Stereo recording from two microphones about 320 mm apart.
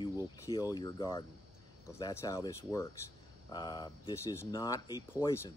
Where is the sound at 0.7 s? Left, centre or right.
Centre.